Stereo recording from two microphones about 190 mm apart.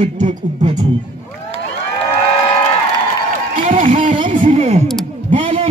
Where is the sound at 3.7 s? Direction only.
45° right (ahead or behind).